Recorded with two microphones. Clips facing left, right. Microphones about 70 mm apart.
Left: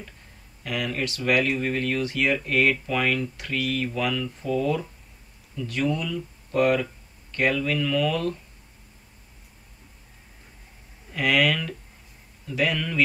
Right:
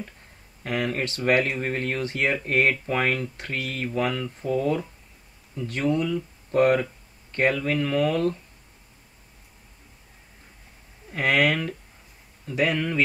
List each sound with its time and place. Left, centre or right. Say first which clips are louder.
0.7 s speech: right 2 dB; right
11.1 s a man's voice: right 1 dB; right